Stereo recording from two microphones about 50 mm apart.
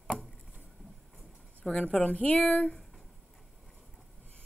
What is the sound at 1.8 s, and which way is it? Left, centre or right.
Speech, left.